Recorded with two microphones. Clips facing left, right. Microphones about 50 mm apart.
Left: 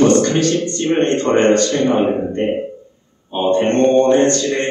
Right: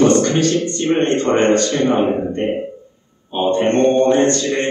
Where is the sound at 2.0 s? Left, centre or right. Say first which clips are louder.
Even; centre.